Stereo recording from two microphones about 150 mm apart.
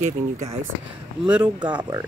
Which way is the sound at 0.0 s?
50° right (ahead or behind).